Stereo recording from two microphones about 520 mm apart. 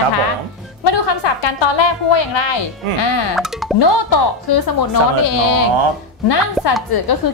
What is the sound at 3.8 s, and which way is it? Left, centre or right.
Speech, left.